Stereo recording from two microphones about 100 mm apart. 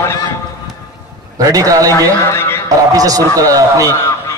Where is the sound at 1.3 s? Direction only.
35° right (ahead or behind).